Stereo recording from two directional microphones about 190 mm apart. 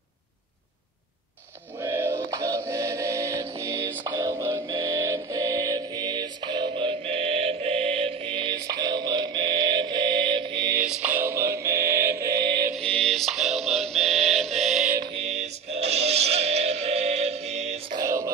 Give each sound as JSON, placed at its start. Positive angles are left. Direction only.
{"t": 1.8, "sound": "music", "side_deg": -10}
{"t": 10.8, "sound": "music", "side_deg": -10}
{"t": 12.7, "sound": "music", "side_deg": 5}
{"t": 15.4, "sound": "music", "side_deg": -35}
{"t": 17.9, "sound": "music", "side_deg": -15}